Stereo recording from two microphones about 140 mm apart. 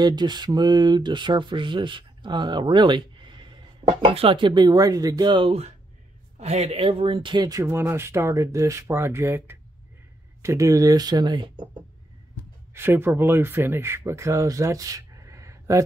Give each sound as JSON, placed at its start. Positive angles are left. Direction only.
{"t": 0.0, "sound": "speech", "side_deg": -30}
{"t": 6.4, "sound": "speech", "side_deg": -50}
{"t": 7.6, "sound": "speech", "side_deg": -15}
{"t": 12.7, "sound": "speech", "side_deg": -15}